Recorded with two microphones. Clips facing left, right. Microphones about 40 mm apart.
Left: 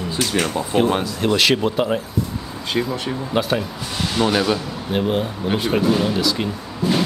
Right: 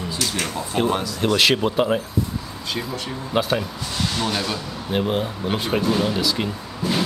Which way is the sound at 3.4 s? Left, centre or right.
Centre.